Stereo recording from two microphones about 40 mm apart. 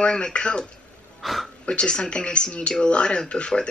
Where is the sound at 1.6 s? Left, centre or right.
Left.